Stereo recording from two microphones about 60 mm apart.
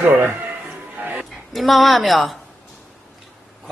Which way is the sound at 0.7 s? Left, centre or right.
Right.